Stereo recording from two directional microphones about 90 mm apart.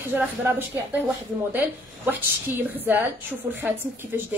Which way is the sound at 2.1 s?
20° right (ahead or behind).